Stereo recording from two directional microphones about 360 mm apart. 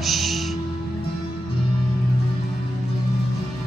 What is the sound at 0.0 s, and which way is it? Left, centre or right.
Music, centre.